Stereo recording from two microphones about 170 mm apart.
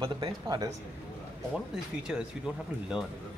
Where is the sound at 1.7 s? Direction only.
5° right (ahead or behind).